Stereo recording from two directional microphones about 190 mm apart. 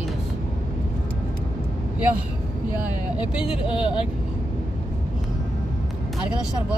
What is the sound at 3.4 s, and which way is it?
Speech, 30° left (ahead or behind).